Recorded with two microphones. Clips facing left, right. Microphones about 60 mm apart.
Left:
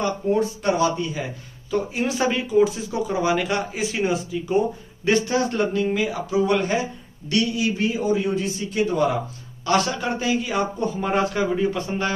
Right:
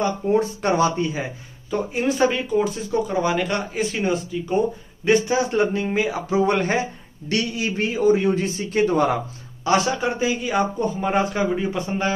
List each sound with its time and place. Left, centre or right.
0.3 s a man's voice: right
1.7 s speech: centre
5.9 s a man's voice: right
9.7 s speech: centre
9.9 s speech: centre